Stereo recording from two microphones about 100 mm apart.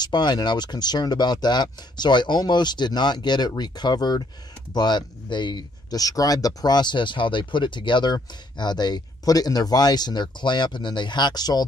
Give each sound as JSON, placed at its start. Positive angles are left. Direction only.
{"t": 0.0, "sound": "speech", "side_deg": 45}